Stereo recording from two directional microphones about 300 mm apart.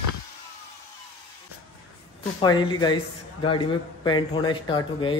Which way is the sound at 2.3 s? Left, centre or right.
Centre.